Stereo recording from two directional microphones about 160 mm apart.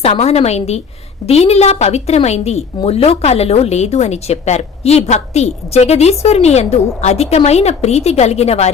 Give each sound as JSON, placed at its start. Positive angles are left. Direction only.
{"t": 0.0, "sound": "a woman's voice", "side_deg": 40}